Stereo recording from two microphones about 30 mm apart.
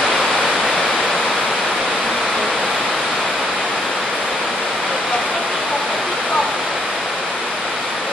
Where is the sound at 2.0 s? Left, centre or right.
Centre.